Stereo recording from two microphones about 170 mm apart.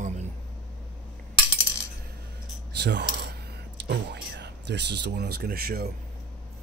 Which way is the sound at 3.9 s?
80° right.